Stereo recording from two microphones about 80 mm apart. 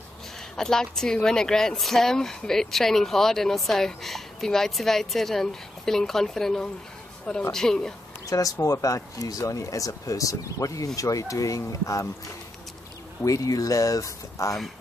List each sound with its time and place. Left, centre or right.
0.6 s speech: centre
8.3 s speech: left
13.2 s speech: left